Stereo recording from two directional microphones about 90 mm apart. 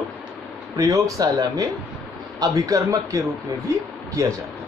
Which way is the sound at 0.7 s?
35° right (ahead or behind).